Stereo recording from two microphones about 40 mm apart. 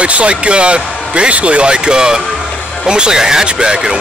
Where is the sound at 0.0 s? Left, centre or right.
Right.